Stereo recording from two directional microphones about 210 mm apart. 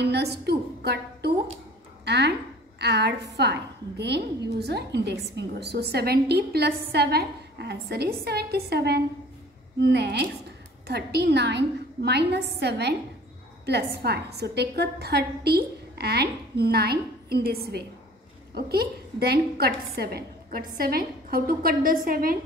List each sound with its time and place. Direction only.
0.1 s a woman's voice: 50° right (ahead or behind)